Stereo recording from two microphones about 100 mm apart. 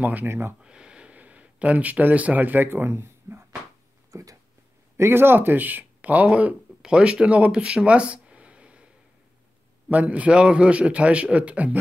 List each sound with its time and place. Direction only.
0.0 s speech: 20° right (ahead or behind)
0.6 s speech: 10° right (ahead or behind); by 4.4 s 35° right (ahead or behind)
4.9 s speech: 25° right (ahead or behind)
9.8 s a man's voice: 15° right (ahead or behind)